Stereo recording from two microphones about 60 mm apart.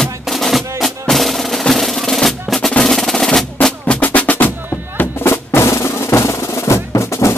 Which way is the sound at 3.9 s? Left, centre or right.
Left.